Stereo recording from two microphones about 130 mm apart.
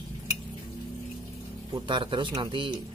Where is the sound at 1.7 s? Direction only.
35° right (ahead or behind).